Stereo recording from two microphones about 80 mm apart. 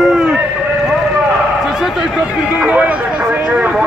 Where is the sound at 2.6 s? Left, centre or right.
Centre.